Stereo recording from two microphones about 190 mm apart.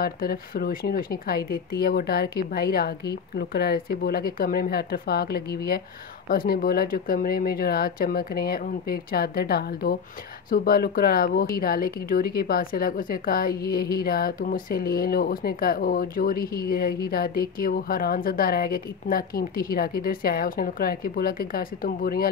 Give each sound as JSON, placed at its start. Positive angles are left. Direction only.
{"t": 0.0, "sound": "speech", "side_deg": 55}